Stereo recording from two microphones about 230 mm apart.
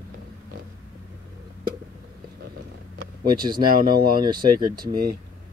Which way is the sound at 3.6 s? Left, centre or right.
Right.